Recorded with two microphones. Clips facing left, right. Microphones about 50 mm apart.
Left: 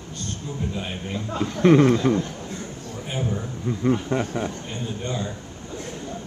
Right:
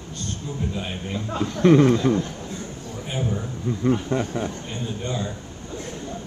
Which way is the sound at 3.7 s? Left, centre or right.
Centre.